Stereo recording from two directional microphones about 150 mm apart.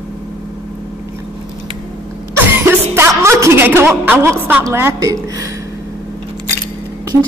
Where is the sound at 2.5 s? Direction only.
15° right (ahead or behind).